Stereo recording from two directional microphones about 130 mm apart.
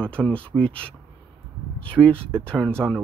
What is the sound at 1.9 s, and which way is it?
Speech, 10° left (ahead or behind).